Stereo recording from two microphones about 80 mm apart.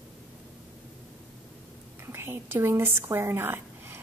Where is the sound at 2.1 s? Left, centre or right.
Right.